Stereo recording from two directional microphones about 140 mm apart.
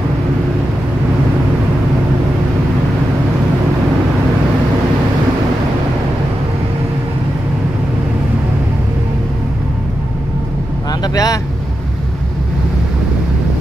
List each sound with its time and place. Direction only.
10.9 s vehicle: 25° left (ahead or behind)